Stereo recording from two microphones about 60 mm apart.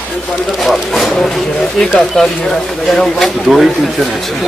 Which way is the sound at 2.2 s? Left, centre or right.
Centre.